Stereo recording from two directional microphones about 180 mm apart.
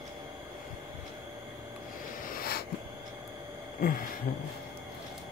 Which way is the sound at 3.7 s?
50° left (ahead or behind).